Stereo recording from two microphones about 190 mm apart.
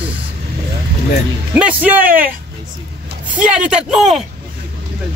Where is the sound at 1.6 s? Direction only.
5° right (ahead or behind).